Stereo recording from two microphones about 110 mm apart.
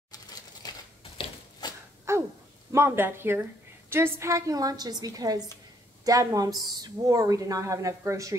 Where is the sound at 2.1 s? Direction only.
25° right (ahead or behind).